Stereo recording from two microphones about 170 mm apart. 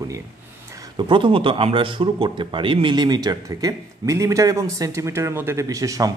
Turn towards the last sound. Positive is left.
turn(degrees=-20)  # may be behind; listen again after turning